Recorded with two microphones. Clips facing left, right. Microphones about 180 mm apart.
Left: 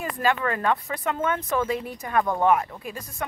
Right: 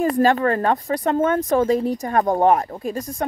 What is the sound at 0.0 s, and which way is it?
Speech, 40° right (ahead or behind).